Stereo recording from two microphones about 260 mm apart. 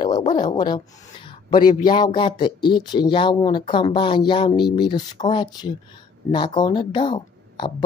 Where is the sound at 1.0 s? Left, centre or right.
Centre.